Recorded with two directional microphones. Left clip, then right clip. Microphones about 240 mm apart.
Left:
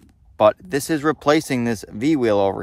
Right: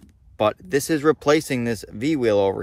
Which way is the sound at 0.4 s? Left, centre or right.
Centre.